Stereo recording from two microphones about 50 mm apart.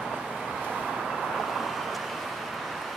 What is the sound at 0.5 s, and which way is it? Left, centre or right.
Vehicle, centre.